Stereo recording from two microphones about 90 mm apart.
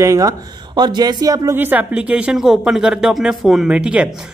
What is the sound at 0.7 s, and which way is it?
Speech, 50° right (ahead or behind).